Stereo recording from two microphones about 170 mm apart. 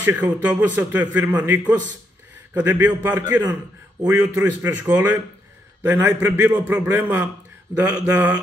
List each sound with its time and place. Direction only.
0.0 s a man's voice: 10° right (ahead or behind)